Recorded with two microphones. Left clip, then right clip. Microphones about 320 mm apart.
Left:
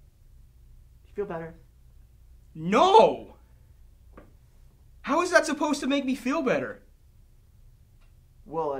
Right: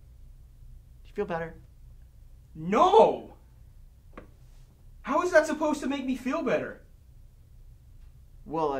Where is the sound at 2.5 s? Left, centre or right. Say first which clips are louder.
Left 3 dB; right.